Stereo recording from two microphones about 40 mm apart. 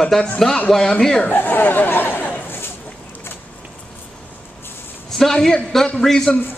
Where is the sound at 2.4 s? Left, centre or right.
Left.